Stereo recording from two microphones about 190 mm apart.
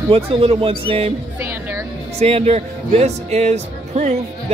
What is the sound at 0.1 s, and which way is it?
Speech, 30° right (ahead or behind).